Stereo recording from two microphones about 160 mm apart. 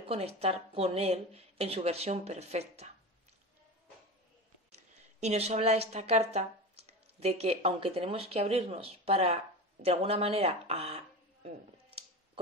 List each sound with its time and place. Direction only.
0.0 s a woman's voice: 40° right (ahead or behind)
4.7 s speech: 45° right (ahead or behind)